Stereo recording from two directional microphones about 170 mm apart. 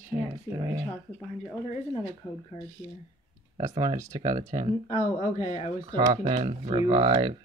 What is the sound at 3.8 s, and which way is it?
Speech, 25° right (ahead or behind).